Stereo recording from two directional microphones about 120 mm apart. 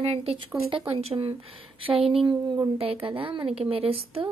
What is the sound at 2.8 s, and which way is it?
A woman's voice, 50° right (ahead or behind).